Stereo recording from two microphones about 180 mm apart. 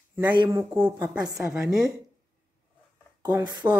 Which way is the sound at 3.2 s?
20° right (ahead or behind).